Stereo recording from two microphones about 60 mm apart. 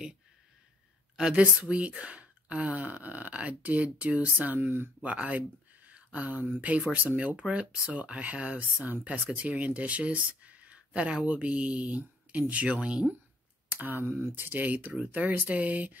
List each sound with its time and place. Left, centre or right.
1.1 s speech: centre
4.6 s speech: right
5.0 s speech: right
13.7 s speech: right